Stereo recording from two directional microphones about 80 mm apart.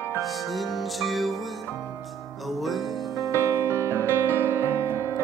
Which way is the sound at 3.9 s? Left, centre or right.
Left.